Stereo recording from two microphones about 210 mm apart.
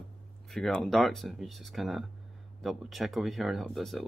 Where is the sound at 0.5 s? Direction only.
Centre (ahead or behind).